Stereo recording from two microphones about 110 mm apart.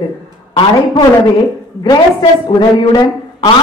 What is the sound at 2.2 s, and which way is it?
A woman's voice, 40° left (ahead or behind).